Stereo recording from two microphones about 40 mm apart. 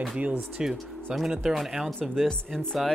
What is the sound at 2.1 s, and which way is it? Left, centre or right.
Speech, centre.